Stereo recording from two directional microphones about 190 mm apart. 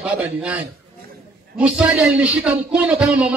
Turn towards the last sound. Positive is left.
turn(degrees=-5)  # may be behind; listen again after turning